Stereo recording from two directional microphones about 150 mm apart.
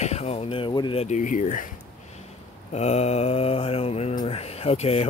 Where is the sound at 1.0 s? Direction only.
55° left (ahead or behind).